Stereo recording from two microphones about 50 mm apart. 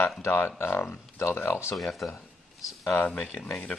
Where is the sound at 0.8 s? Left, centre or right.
Left.